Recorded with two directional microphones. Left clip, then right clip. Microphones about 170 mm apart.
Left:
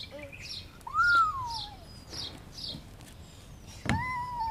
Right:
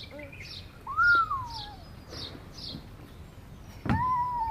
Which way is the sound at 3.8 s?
5° left (ahead or behind).